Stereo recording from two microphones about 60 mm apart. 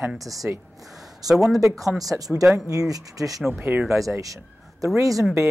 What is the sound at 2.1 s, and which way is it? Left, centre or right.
Speech, right.